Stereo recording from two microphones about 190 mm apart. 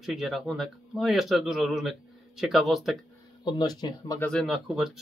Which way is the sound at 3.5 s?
20° left (ahead or behind).